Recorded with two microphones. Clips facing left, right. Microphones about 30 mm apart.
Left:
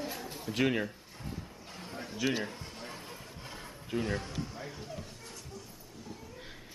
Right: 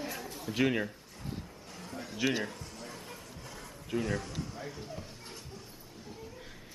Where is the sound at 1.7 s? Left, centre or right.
Left.